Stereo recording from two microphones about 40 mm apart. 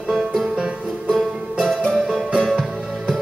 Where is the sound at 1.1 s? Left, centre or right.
Centre.